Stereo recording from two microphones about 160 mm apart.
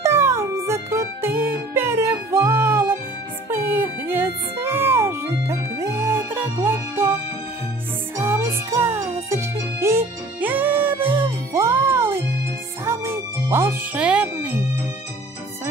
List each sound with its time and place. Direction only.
0.0 s music: 15° right (ahead or behind)
8.2 s music: 15° right (ahead or behind)